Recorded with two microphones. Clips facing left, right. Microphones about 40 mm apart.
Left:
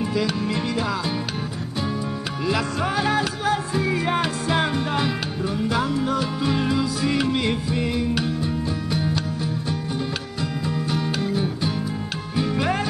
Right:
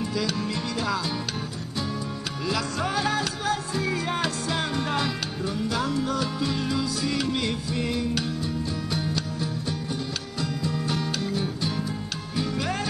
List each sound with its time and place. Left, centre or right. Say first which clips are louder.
0.0 s music: left 4 dB; left
2.4 s music: left 4 dB; centre
10.9 s music: left 4 dB; centre